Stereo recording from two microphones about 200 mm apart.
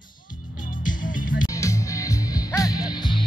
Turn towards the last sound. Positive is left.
turn(degrees=20)  # may be behind; listen again after turning